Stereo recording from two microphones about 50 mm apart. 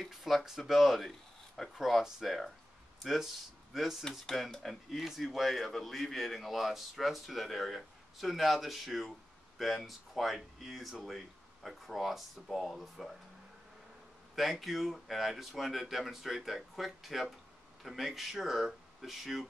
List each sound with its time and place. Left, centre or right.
0.0 s a man's voice: centre
14.3 s a man's voice: centre